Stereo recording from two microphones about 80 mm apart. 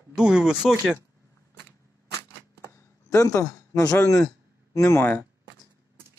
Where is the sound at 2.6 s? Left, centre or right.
Left.